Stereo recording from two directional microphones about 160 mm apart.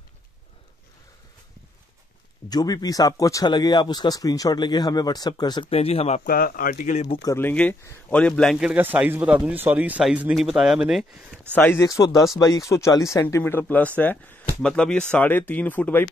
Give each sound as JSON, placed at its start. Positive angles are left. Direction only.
{"t": 2.5, "sound": "speech", "side_deg": 25}
{"t": 5.7, "sound": "speech", "side_deg": 40}
{"t": 6.2, "sound": "speech", "side_deg": 65}
{"t": 7.1, "sound": "speech", "side_deg": 20}
{"t": 11.5, "sound": "speech", "side_deg": 15}